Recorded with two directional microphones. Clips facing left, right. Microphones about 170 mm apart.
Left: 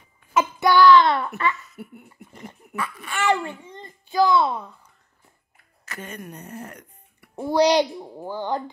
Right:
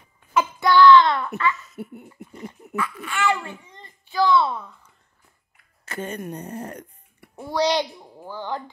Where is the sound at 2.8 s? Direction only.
15° left (ahead or behind).